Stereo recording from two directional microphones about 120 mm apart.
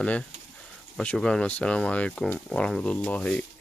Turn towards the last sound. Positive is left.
turn(degrees=10)  # may be behind; listen again after turning